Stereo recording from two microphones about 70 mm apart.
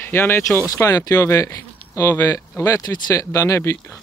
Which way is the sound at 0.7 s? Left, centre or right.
Left.